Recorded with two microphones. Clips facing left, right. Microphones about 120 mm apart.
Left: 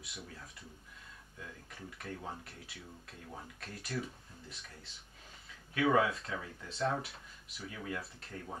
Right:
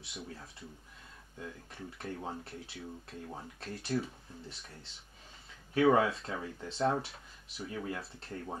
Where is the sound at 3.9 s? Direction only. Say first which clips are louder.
Right 6 dB; 35° right (ahead or behind).